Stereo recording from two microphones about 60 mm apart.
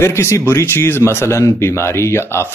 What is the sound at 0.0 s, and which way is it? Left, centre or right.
Speech, left.